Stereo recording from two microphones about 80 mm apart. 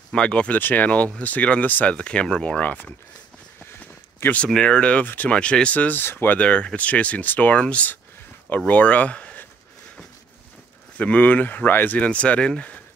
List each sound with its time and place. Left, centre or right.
0.1 s speech: centre
3.8 s a sound: centre
4.6 s speech: centre
11.0 s speech: centre